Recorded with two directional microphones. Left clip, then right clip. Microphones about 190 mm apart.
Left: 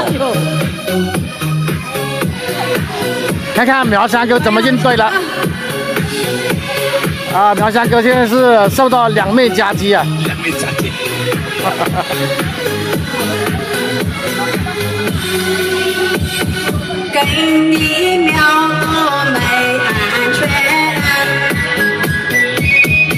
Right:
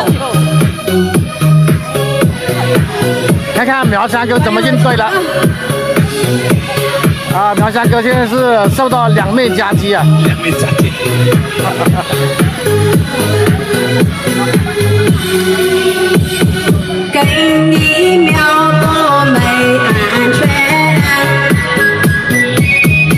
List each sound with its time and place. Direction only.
1.1 s music: 45° right (ahead or behind)
3.5 s speech: centre (ahead or behind)
7.3 s speech: centre (ahead or behind)
15.0 s music: 40° right (ahead or behind)
18.2 s music: 55° right (ahead or behind)